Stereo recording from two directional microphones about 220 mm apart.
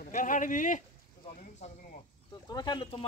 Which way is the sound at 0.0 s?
35° left (ahead or behind).